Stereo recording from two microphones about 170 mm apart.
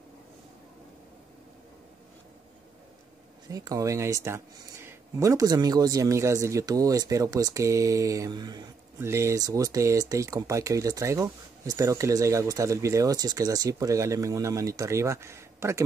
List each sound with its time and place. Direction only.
3.4 s speech: 20° right (ahead or behind)